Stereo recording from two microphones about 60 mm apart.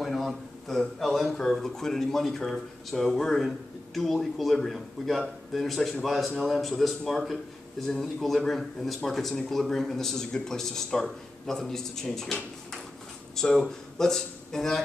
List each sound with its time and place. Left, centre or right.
0.0 s a sound: centre
1.3 s speech: centre
13.4 s speech: centre